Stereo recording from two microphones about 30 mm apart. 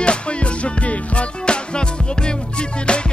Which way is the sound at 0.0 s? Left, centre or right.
Left.